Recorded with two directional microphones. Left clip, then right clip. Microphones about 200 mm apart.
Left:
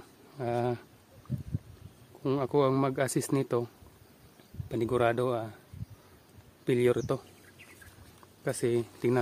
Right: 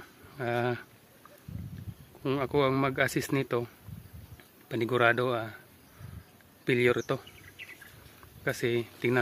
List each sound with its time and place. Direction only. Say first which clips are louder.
0.4 s speech: right 1 dB; 10° left (ahead or behind)
2.2 s speech: even; 15° left (ahead or behind)
6.6 s speech: right 1 dB; 15° left (ahead or behind)
8.5 s speech: even; 15° left (ahead or behind)